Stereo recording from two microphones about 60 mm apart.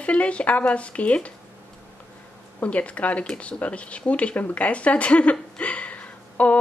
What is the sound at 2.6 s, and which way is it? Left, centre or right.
Speech, left.